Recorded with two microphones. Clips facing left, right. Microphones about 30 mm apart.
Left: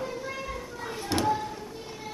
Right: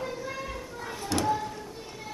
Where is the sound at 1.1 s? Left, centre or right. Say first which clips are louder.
Left 1 dB; centre.